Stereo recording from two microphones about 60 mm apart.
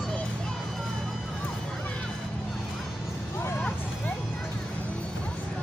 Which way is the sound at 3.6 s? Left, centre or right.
Left.